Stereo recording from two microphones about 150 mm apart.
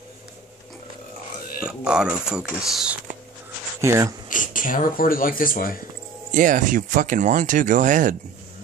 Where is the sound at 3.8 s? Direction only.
20° right (ahead or behind).